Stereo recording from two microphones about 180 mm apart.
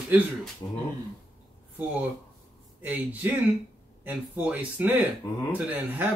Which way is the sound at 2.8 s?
10° right (ahead or behind).